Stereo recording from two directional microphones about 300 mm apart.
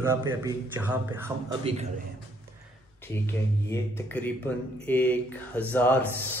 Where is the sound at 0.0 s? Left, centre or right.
Centre.